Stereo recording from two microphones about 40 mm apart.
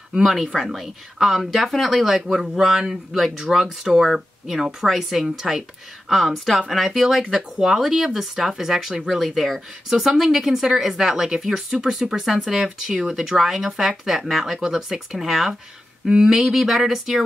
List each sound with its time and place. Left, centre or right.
0.2 s speech: centre
6.0 s speech: centre
16.1 s speech: centre